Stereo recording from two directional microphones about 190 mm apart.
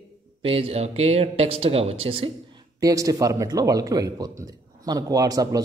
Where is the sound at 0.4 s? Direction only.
30° right (ahead or behind).